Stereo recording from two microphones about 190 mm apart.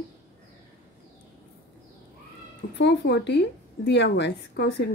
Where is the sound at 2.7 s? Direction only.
65° left (ahead or behind).